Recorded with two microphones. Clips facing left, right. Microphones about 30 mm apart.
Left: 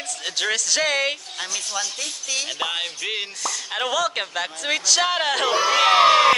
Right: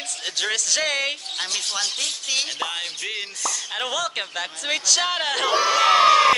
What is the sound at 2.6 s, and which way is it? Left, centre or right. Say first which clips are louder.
Speech: left 2 dB; centre.